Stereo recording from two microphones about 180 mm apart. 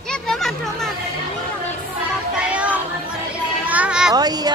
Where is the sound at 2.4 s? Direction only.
5° right (ahead or behind).